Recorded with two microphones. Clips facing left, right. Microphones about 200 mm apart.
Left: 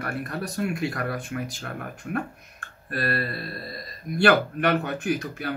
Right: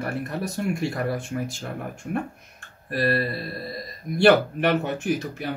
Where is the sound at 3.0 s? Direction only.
25° right (ahead or behind).